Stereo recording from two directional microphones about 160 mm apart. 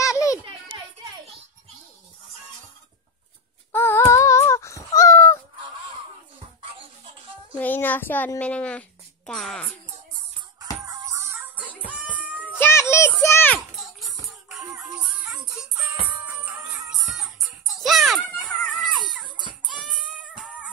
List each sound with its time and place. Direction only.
0.0 s children playing: 20° left (ahead or behind)
3.7 s a sound: 15° left (ahead or behind)
7.5 s a woman's voice: 10° left (ahead or behind)
10.9 s music: 15° right (ahead or behind)
12.5 s music: 15° left (ahead or behind)
13.7 s music: centre (ahead or behind)
17.7 s a sound: centre (ahead or behind)
19.6 s music: 5° right (ahead or behind)